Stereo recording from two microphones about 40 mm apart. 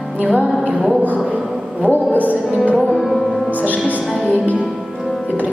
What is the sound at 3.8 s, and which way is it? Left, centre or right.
Music, right.